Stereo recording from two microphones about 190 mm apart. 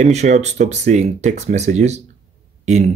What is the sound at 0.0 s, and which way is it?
Speech, 35° right (ahead or behind).